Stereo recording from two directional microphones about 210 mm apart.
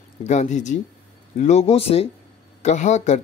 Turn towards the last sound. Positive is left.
turn(degrees=35)  # may be behind; listen again after turning